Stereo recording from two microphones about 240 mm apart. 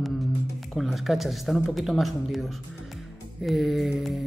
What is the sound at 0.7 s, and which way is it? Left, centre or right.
Speech, centre.